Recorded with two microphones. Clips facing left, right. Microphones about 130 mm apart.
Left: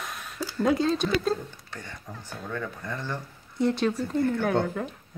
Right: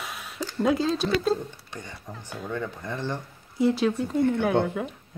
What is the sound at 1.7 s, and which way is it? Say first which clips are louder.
Speech: right 1 dB; 15° right (ahead or behind).